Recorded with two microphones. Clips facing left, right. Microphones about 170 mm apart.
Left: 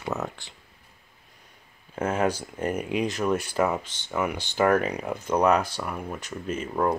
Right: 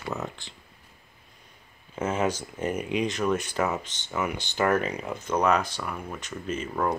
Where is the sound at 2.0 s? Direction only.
55° left (ahead or behind).